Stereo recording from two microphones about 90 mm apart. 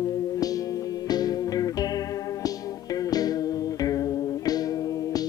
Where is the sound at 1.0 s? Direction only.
45° left (ahead or behind).